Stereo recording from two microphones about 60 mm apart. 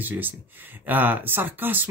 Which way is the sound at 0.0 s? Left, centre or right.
Right.